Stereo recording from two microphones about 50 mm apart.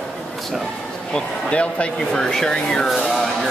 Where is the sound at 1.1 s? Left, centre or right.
Left.